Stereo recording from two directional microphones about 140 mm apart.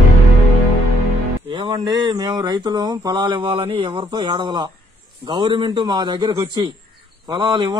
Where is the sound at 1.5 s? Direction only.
35° right (ahead or behind).